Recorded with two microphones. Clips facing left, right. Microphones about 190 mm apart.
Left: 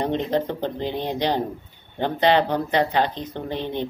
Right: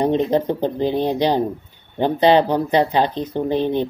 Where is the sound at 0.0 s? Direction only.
15° right (ahead or behind).